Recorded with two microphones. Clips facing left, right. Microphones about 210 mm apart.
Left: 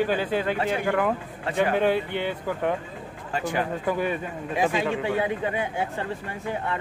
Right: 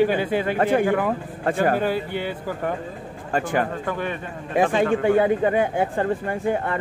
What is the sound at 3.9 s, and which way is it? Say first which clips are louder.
Speech: left 1 dB; 10° left (ahead or behind).